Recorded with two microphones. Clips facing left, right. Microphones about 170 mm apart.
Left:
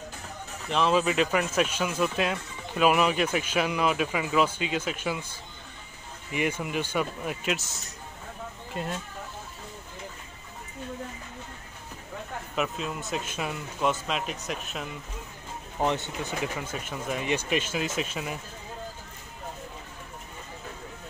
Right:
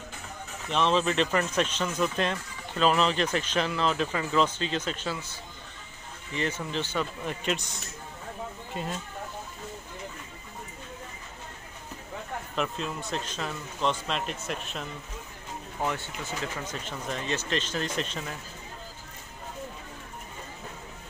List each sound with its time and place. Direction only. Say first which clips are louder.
0.7 s speech: left 1 dB; 5° left (ahead or behind)
6.3 s speech: left 2 dB; 10° left (ahead or behind)
12.5 s speech: left 1 dB; 5° left (ahead or behind)
15.8 s speech: left 4 dB; 20° left (ahead or behind)